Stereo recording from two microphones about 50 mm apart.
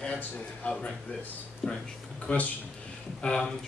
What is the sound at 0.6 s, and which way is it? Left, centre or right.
Speech, left.